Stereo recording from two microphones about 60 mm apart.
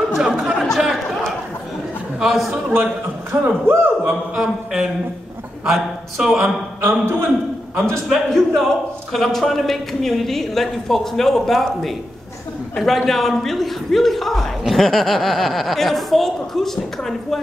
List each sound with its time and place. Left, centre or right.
0.1 s chatter: centre
2.1 s a man's voice: centre
2.7 s a man's voice: right
4.4 s a sound: centre
5.7 s a man's voice: centre
6.8 s a man's voice: right
8.1 s a man's voice: centre